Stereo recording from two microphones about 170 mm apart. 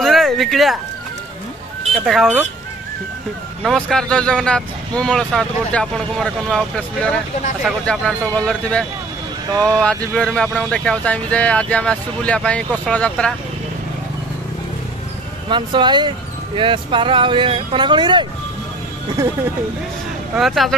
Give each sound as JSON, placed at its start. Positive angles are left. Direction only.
{"t": 0.0, "sound": "a sound", "side_deg": 0}
{"t": 2.0, "sound": "speech", "side_deg": 0}
{"t": 3.6, "sound": "speech", "side_deg": 5}
{"t": 15.5, "sound": "speech", "side_deg": -25}
{"t": 20.3, "sound": "speech", "side_deg": 0}